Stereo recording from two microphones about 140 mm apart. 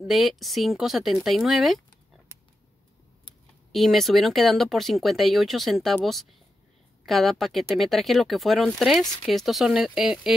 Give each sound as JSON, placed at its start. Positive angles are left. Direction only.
{"t": 0.0, "sound": "speech", "side_deg": 0}
{"t": 3.7, "sound": "speech", "side_deg": 0}
{"t": 7.1, "sound": "speech", "side_deg": 0}